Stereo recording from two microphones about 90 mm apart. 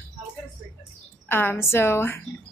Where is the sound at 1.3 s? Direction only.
25° left (ahead or behind).